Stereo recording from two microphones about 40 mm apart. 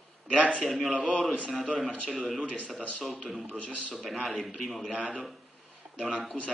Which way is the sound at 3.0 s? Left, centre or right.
Centre.